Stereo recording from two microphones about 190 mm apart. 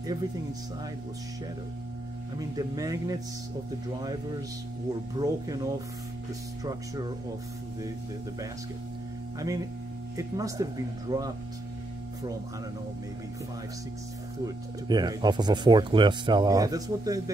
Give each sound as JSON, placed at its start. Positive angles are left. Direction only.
{"t": 2.3, "sound": "speech", "side_deg": -20}
{"t": 9.4, "sound": "speech", "side_deg": -20}
{"t": 14.4, "sound": "speech", "side_deg": -20}